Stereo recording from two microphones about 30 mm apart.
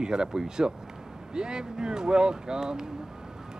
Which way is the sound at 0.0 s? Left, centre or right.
Right.